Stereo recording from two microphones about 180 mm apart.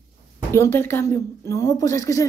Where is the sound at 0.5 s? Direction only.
15° left (ahead or behind).